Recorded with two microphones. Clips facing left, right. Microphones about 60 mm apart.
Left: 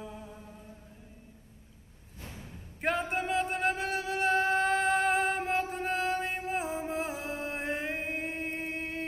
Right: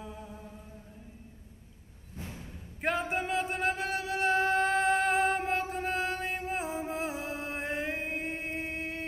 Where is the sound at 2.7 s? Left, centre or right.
Centre.